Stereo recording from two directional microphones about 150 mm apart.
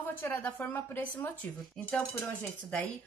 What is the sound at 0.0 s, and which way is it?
Speech, 15° left (ahead or behind).